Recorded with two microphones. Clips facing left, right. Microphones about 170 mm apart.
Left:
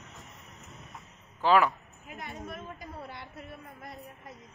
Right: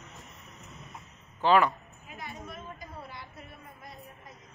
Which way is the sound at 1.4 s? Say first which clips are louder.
Even; 5° left (ahead or behind).